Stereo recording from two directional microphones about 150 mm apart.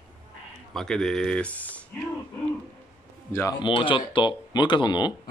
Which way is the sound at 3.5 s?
35° left (ahead or behind).